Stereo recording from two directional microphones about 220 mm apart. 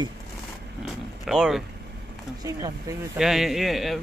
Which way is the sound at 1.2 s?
Centre (ahead or behind).